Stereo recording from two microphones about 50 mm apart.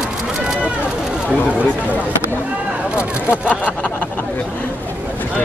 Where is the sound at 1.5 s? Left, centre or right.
Right.